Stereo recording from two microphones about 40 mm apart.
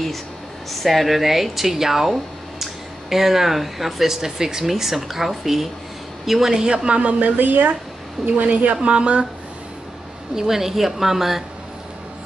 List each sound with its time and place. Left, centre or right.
0.7 s speech: centre
6.7 s speech: right
7.3 s speech: right
8.3 s speech: right
10.3 s speech: centre